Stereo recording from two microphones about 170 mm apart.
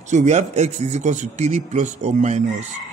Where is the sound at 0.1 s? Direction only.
45° right (ahead or behind).